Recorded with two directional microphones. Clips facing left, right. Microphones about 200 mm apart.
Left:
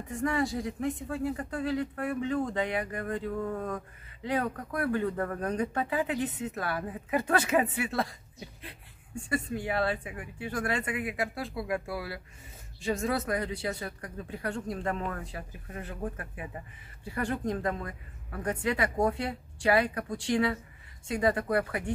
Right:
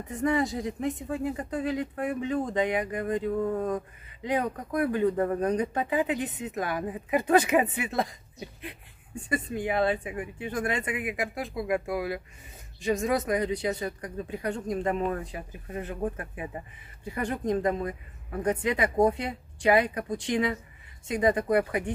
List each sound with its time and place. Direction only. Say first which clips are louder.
0.2 s speech: right 3 dB; 20° right (ahead or behind)